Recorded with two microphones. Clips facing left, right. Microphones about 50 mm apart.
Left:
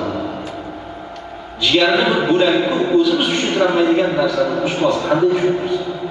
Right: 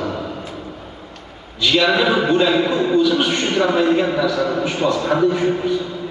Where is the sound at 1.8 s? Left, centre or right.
Centre.